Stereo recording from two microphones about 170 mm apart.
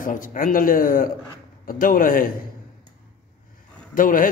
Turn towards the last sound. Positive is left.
turn(degrees=55)  # may be behind; listen again after turning